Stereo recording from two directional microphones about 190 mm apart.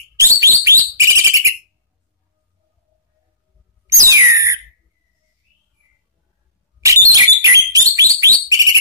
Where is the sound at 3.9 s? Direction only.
15° right (ahead or behind).